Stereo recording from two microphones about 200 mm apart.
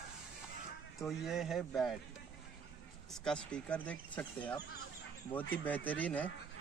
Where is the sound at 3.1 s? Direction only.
5° left (ahead or behind).